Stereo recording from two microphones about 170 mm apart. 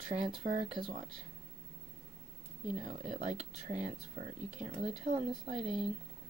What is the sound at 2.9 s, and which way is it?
Speech, 40° right (ahead or behind).